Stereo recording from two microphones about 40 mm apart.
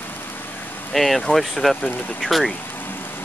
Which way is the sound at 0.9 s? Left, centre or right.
Centre.